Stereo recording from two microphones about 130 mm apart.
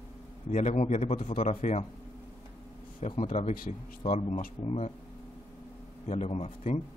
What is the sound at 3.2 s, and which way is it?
Speech, 75° left (ahead or behind).